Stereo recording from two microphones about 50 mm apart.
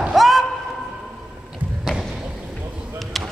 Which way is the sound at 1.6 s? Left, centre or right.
Right.